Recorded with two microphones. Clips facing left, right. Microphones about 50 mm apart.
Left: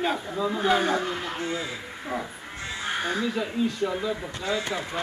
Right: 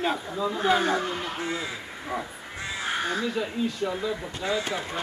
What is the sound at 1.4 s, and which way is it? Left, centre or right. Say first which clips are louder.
Speech: even; centre.